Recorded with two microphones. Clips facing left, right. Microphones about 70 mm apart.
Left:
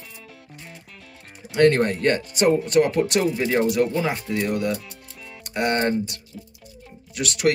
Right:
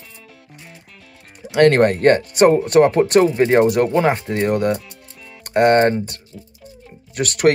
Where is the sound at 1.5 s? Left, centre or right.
Right.